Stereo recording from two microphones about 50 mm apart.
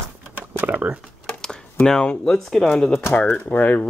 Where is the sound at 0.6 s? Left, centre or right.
Right.